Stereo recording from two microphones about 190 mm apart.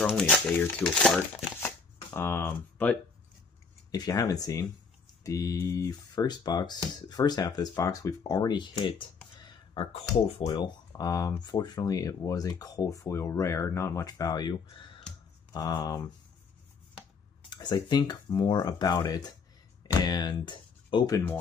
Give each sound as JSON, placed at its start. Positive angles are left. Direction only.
{"t": 0.0, "sound": "speech", "side_deg": 5}
{"t": 3.9, "sound": "speech", "side_deg": 20}
{"t": 9.4, "sound": "a sound", "side_deg": 25}
{"t": 10.4, "sound": "speech", "side_deg": 20}
{"t": 17.5, "sound": "speech", "side_deg": 20}